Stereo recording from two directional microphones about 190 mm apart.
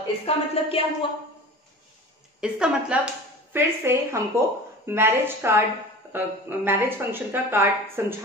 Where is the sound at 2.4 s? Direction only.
5° right (ahead or behind).